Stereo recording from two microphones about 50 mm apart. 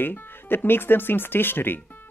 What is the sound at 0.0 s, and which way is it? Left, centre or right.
Speech, left.